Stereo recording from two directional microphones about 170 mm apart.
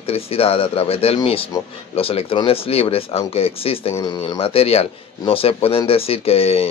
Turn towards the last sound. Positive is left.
turn(degrees=35)  # may be behind; listen again after turning